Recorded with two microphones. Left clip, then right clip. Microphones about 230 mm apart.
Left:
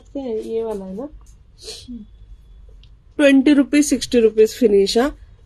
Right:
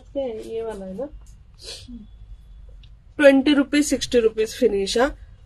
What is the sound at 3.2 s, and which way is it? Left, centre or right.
Speech, centre.